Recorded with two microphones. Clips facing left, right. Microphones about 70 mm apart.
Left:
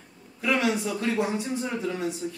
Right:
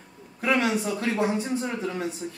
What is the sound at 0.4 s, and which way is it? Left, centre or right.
A man's voice, right.